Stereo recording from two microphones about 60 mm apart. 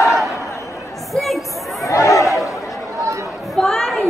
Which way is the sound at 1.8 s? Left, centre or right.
Left.